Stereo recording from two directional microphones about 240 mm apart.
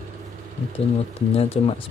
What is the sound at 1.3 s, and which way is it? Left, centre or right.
Speech, left.